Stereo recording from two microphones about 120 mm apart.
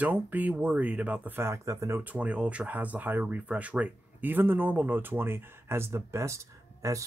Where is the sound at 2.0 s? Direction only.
15° right (ahead or behind).